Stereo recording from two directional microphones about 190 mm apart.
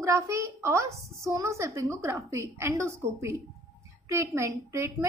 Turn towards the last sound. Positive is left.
turn(degrees=-15)  # may be behind; listen again after turning